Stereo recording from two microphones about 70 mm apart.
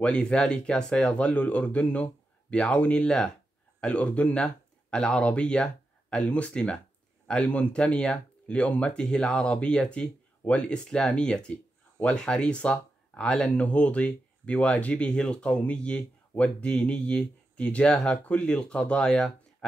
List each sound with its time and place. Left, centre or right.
0.0 s speech: centre